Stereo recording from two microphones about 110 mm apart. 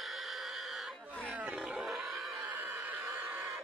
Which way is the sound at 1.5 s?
5° right (ahead or behind).